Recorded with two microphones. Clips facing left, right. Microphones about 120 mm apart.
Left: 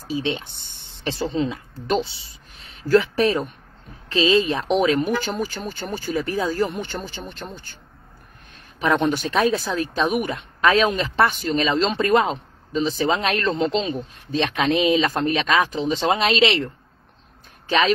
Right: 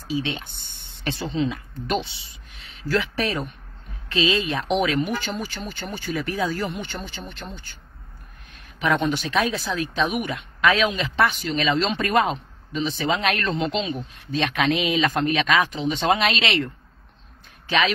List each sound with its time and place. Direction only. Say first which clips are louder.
1.0 s a woman's voice: left 2 dB; 40° left (ahead or behind)
8.7 s a woman's voice: left 2 dB; 45° left (ahead or behind)